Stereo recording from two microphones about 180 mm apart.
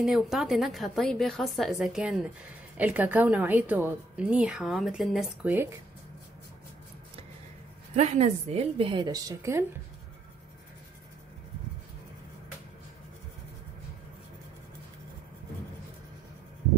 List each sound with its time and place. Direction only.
0.0 s a woman's voice: centre (ahead or behind)
5.4 s a woman's voice: 10° right (ahead or behind)
7.9 s a woman's voice: 40° right (ahead or behind); by 9.7 s 15° right (ahead or behind)